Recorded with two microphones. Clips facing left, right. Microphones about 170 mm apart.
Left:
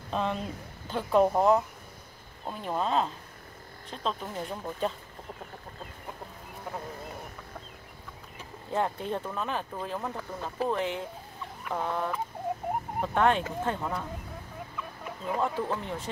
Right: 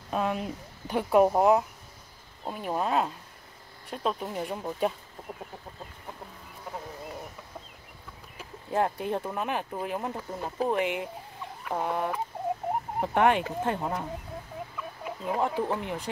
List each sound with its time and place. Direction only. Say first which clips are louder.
0.1 s speech: right 2 dB; 10° right (ahead or behind)
8.4 s speech: right 2 dB; 5° right (ahead or behind)
15.2 s speech: right 2 dB; 15° right (ahead or behind)